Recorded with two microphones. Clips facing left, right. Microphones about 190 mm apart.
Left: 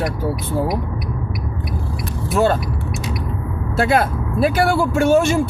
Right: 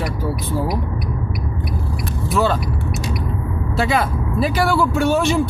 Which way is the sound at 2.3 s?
50° left (ahead or behind).